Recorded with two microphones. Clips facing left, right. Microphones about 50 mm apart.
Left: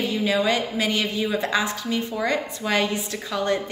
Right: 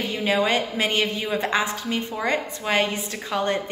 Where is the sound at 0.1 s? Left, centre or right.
Right.